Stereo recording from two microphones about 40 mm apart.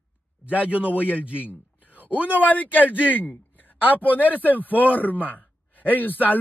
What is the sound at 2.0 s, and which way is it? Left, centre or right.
Speech, right.